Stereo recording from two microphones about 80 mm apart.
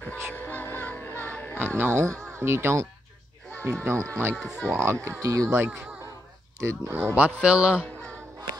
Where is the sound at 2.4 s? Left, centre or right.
Right.